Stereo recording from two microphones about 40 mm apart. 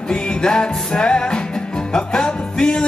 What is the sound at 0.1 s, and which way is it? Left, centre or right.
Music, left.